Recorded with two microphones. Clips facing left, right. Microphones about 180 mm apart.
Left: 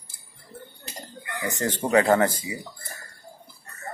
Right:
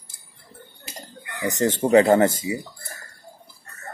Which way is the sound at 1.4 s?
20° right (ahead or behind).